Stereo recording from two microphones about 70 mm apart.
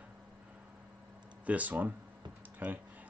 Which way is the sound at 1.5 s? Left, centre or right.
Right.